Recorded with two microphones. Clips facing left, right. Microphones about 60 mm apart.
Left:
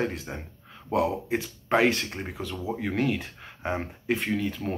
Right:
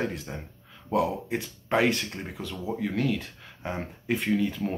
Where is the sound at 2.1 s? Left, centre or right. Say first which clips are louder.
Left 2 dB; centre.